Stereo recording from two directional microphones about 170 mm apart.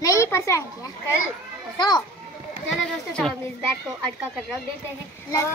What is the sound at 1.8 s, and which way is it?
Speech, 25° left (ahead or behind).